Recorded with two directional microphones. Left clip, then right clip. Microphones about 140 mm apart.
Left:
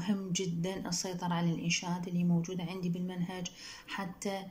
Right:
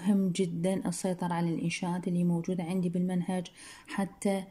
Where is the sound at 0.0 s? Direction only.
30° right (ahead or behind).